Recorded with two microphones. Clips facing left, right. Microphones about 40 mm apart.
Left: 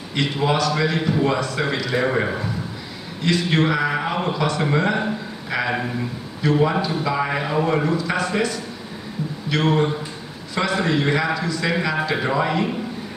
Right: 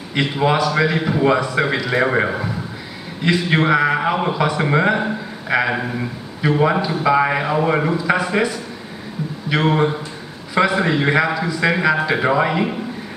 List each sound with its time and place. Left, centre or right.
0.1 s a man's voice: centre